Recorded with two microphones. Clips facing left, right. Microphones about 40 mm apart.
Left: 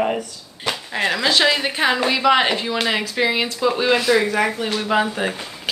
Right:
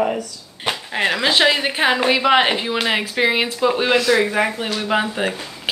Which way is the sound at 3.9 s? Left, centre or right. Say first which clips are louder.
Right 2 dB; centre.